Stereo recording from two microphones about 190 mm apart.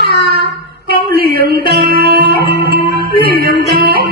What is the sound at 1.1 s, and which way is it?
Music, 55° right (ahead or behind).